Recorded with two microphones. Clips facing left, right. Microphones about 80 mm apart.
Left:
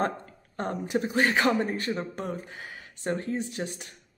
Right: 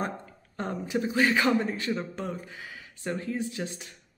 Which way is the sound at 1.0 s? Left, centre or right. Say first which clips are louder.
Even; left.